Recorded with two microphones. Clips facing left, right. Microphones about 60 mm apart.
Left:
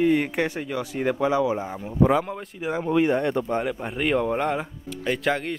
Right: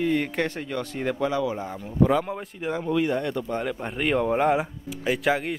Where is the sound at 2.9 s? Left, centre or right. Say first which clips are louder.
Left 4 dB; left.